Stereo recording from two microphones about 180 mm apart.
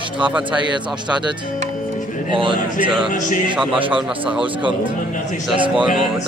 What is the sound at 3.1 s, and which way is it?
Speech, 45° left (ahead or behind).